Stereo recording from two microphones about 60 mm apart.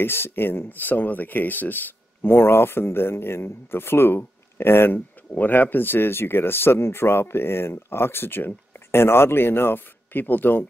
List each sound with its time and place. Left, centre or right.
0.0 s speech: left